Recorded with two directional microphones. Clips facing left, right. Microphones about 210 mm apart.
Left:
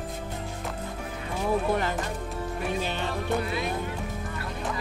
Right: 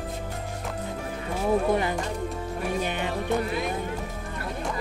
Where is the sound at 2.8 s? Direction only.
15° right (ahead or behind).